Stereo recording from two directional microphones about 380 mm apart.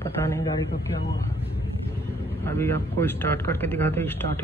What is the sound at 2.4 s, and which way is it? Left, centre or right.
Speech, centre.